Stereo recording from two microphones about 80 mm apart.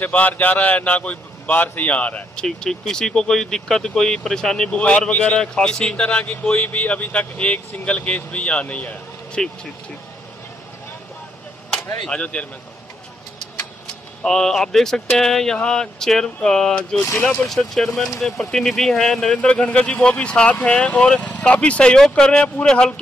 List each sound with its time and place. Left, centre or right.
0.0 s a man's voice: centre
12.1 s a man's voice: centre
14.2 s a man's voice: centre
17.0 s speech: left
17.6 s a man's voice: centre